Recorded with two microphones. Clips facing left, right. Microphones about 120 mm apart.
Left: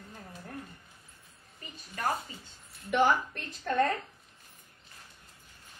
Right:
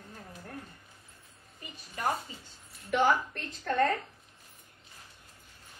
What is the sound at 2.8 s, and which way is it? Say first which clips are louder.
A woman's voice: even; 10° left (ahead or behind).